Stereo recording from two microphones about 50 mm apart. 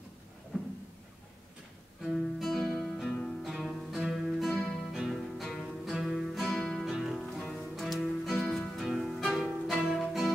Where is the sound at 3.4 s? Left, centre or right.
Centre.